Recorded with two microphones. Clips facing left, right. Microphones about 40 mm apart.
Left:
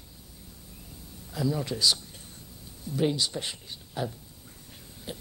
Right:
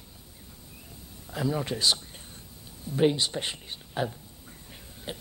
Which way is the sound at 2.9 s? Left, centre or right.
Right.